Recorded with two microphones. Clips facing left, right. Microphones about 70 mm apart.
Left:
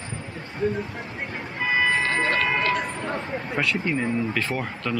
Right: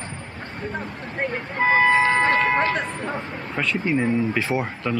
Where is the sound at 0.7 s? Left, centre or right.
Right.